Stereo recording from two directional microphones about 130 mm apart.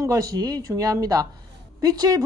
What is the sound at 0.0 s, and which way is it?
A woman's voice, 25° right (ahead or behind).